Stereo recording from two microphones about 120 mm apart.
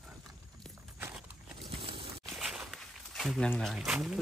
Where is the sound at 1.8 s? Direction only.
50° right (ahead or behind).